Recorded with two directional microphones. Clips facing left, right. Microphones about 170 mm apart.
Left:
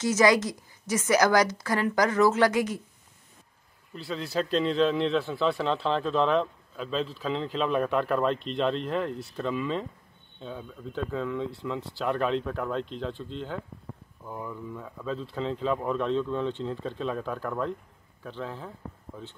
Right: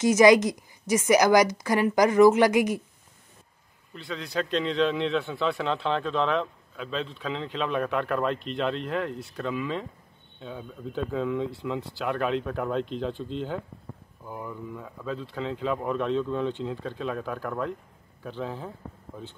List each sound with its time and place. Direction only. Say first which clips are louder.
0.0 s a woman's voice: right 5 dB; 15° right (ahead or behind)
3.9 s speech: left 1 dB; centre (ahead or behind)
11.1 s a woman's voice: right 4 dB; 10° right (ahead or behind)